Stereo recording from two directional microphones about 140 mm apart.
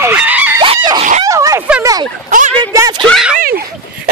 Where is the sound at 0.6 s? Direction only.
35° right (ahead or behind).